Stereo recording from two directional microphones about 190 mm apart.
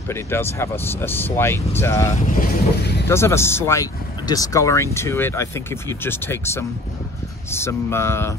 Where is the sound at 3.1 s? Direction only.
15° left (ahead or behind).